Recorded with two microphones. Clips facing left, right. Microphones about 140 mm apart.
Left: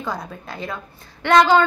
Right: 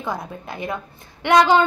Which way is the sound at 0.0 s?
20° right (ahead or behind).